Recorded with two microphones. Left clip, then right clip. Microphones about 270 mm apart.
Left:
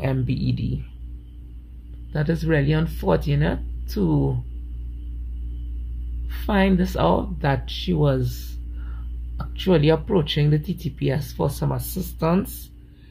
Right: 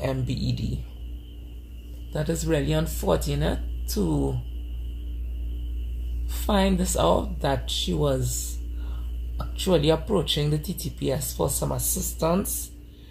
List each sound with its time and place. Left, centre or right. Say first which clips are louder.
0.0 s speech: left 2 dB; left
2.1 s speech: left 3 dB; left
6.3 s speech: left 2 dB; left
9.4 s speech: left 3 dB; left